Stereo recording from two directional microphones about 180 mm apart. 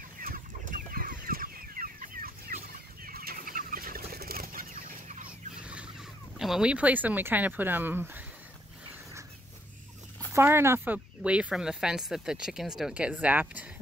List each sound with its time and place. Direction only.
0.2 s chicken: 50° right (ahead or behind)
5.6 s fowl: 5° right (ahead or behind)
6.3 s speech: 5° right (ahead or behind)
10.3 s speech: 15° right (ahead or behind)